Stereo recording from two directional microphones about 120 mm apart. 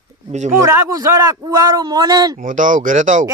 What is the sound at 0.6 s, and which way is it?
A man's voice, 25° right (ahead or behind).